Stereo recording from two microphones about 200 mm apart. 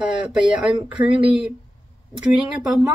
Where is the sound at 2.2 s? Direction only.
5° right (ahead or behind).